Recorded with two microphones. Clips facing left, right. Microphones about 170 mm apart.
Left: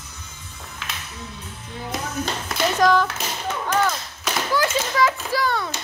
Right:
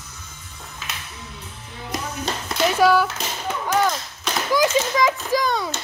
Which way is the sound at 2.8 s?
10° right (ahead or behind).